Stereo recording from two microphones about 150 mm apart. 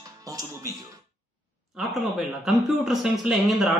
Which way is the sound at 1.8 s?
Centre (ahead or behind).